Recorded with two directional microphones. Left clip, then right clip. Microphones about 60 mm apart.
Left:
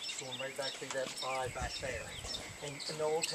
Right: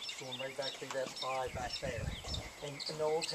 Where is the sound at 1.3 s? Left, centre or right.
Centre.